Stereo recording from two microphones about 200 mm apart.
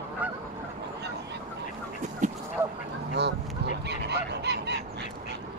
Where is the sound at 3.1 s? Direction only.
60° right (ahead or behind).